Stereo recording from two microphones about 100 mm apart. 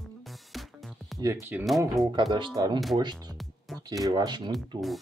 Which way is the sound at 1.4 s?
20° right (ahead or behind).